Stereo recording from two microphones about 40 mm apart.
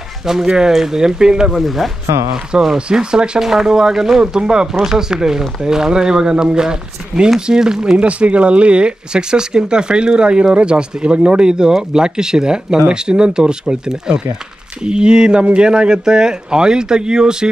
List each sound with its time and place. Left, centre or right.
0.2 s speech: centre
1.5 s speech: centre
2.5 s speech: right
8.0 s speech: right